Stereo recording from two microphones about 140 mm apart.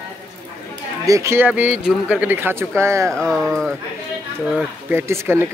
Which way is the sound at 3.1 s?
5° left (ahead or behind).